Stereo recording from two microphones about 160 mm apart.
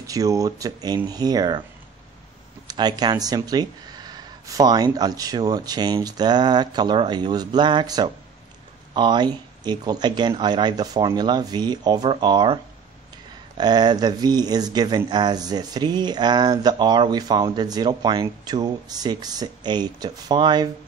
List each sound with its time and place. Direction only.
0.0 s speech: 20° right (ahead or behind)
2.7 s speech: 25° right (ahead or behind)
13.6 s speech: 25° right (ahead or behind)